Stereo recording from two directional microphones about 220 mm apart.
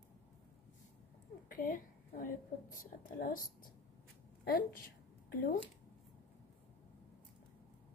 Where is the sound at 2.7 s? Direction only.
40° left (ahead or behind).